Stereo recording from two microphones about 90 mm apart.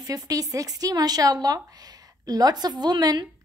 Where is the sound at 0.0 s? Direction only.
40° right (ahead or behind).